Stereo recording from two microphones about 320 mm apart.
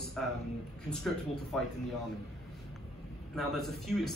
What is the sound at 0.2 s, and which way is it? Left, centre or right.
A man's voice, centre.